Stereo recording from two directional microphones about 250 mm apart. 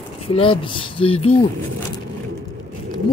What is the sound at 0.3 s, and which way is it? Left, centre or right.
Speech, left.